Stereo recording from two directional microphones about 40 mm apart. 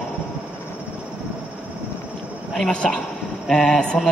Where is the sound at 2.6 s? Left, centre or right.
Centre.